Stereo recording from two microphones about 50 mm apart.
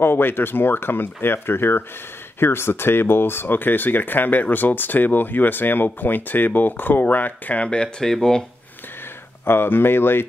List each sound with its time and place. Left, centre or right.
0.0 s speech: left
8.0 s speech: centre
9.4 s speech: left